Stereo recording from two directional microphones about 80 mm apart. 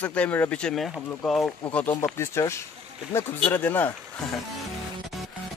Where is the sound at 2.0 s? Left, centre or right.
Left.